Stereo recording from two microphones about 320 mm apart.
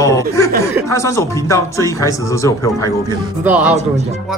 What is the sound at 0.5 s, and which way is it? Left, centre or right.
Speech, centre.